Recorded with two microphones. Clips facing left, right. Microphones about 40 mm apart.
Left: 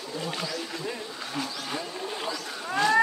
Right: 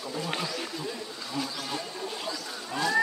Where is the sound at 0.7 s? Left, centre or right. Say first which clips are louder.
Left 2 dB; left.